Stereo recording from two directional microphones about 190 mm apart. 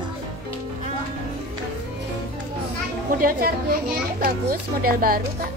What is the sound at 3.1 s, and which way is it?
A child's voice, 50° right (ahead or behind).